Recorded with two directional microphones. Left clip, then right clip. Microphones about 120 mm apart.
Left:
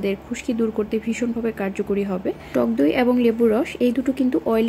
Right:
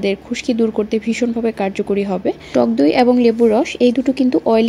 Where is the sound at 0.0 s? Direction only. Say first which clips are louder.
Right 6 dB; 40° right (ahead or behind).